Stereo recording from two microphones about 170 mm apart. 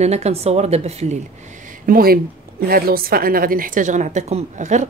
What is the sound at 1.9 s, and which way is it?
A woman's voice, 60° right (ahead or behind).